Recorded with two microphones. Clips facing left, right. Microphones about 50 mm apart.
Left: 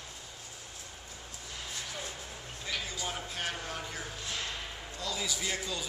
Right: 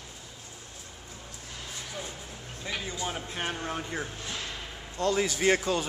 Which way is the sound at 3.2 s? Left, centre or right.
Right.